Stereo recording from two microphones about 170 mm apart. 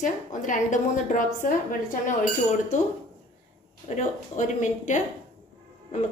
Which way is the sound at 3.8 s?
45° left (ahead or behind).